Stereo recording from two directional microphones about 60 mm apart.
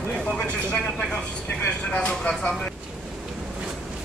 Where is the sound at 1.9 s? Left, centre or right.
Centre.